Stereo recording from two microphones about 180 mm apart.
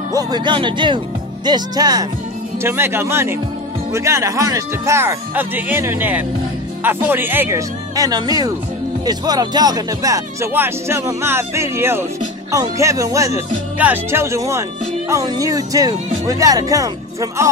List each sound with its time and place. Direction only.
0.1 s speech: 20° right (ahead or behind)